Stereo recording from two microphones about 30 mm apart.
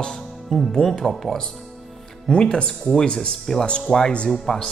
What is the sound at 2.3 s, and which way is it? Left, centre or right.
Speech, left.